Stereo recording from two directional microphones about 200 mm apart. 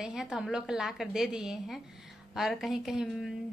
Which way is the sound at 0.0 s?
Centre (ahead or behind).